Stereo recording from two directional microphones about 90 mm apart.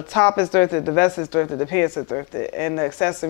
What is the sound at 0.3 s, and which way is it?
Speech, 25° left (ahead or behind).